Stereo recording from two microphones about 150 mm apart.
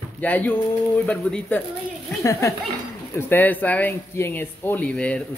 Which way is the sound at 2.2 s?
20° left (ahead or behind).